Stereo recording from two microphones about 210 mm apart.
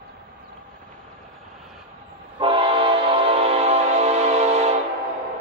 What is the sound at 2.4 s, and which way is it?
Train, 25° right (ahead or behind).